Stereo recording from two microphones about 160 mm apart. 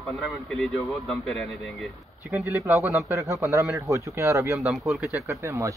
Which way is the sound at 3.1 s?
20° right (ahead or behind).